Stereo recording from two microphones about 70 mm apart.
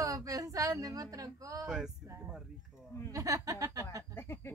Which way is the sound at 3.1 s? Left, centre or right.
Right.